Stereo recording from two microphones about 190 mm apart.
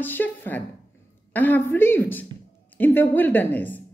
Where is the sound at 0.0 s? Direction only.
10° left (ahead or behind).